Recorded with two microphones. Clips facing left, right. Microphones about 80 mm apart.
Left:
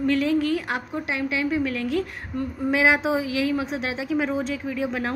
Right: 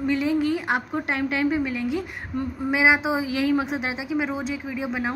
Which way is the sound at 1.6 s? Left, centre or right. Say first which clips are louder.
Left 1 dB; centre.